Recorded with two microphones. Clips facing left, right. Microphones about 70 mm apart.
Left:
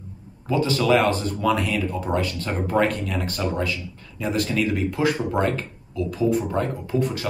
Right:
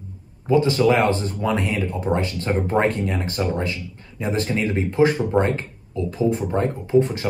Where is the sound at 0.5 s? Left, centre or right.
Right.